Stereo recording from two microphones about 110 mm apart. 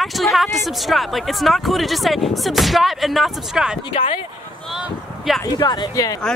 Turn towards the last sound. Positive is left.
turn(degrees=35)  # may be behind; listen again after turning